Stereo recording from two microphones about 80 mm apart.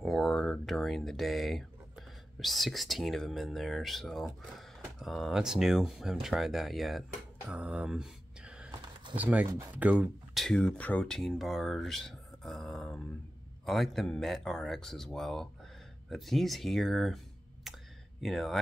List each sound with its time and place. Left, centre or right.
0.0 s speech: centre
7.5 s a sound: centre
9.1 s speech: centre
10.3 s speech: centre
17.7 s a sound: centre
18.2 s speech: centre